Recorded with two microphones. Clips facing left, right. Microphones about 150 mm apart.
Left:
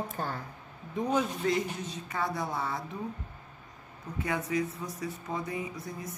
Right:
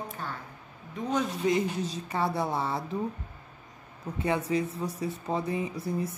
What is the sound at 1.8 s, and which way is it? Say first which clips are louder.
Speech: right 4 dB; 30° right (ahead or behind).